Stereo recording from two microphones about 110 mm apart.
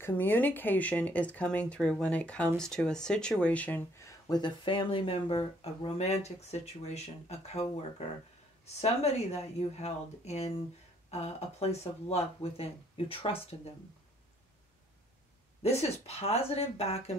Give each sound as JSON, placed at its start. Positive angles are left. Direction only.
{"t": 0.0, "sound": "speech", "side_deg": 20}
{"t": 4.0, "sound": "speech", "side_deg": 40}
{"t": 8.8, "sound": "speech", "side_deg": 75}
{"t": 15.6, "sound": "speech", "side_deg": 70}